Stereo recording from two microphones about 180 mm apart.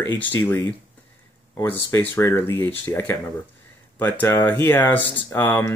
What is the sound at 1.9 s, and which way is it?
Speech, 10° left (ahead or behind).